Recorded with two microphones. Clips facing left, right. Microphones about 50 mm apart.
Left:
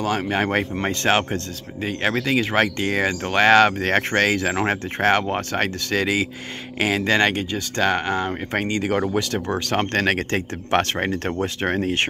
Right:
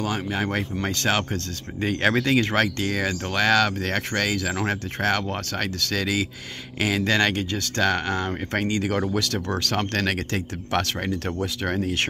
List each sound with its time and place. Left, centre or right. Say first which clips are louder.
0.0 s speech: left 4 dB; left
1.8 s speech: right 1 dB; centre
2.5 s speech: left 3 dB; left